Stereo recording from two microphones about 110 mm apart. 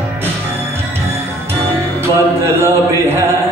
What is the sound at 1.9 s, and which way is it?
Music, 25° right (ahead or behind).